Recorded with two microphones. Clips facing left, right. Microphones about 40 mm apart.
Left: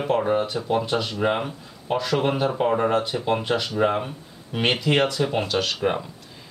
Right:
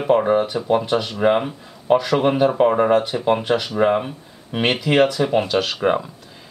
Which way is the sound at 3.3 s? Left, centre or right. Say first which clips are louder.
Right 4 dB; centre.